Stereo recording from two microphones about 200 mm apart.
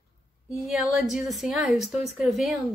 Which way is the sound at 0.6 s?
Centre (ahead or behind).